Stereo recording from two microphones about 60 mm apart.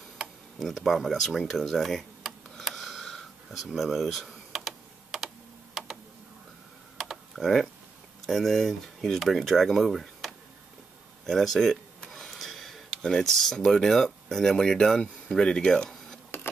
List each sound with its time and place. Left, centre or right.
0.6 s speech: centre
4.3 s typing: centre
5.8 s tick: centre
7.0 s computer keyboard: centre
8.3 s speech: centre
16.3 s a sound: left